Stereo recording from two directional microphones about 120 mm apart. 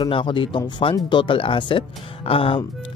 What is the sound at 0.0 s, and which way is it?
Speech, 40° left (ahead or behind).